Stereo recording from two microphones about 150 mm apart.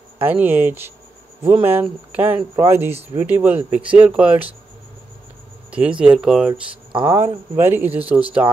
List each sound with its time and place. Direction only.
0.2 s speech: 15° right (ahead or behind)
5.7 s speech: 10° right (ahead or behind)
6.5 s speech: 35° right (ahead or behind)
7.1 s speech: 15° right (ahead or behind)